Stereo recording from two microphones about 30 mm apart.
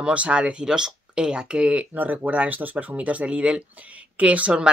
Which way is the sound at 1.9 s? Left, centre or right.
Right.